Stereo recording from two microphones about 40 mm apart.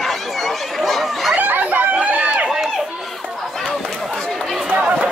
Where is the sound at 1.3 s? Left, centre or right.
Right.